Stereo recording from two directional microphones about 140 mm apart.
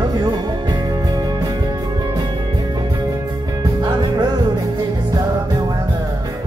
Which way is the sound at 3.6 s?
30° right (ahead or behind).